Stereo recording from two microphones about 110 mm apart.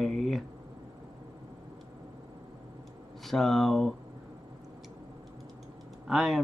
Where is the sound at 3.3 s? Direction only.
Centre (ahead or behind).